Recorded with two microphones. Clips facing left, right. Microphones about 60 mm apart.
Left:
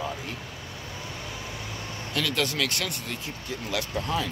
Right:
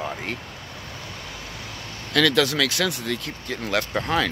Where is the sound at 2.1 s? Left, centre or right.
Right.